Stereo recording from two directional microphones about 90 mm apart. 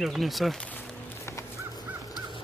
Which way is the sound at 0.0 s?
Centre (ahead or behind).